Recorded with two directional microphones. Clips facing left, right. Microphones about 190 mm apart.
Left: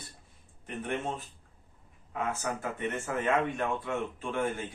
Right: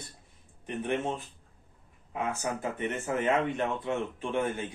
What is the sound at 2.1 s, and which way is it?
Speech, 20° right (ahead or behind).